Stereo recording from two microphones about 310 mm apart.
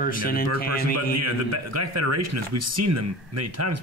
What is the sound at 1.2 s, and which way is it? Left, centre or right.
A man's voice, right.